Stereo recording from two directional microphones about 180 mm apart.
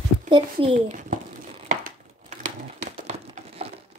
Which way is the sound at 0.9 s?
45° right (ahead or behind).